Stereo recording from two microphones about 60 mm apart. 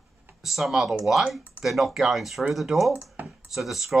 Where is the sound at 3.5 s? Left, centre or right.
Centre.